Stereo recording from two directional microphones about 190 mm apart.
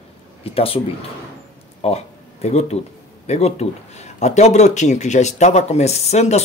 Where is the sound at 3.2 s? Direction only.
35° left (ahead or behind).